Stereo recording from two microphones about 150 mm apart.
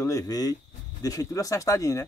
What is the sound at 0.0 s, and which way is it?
Speech, 20° left (ahead or behind).